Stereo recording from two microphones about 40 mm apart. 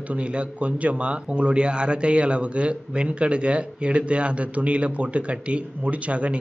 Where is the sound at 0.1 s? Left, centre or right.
Right.